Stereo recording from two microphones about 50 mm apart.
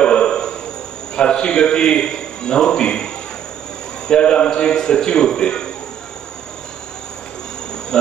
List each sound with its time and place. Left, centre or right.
0.0 s a sound: centre
1.1 s a man's voice: centre
4.1 s a man's voice: centre
7.9 s insect: centre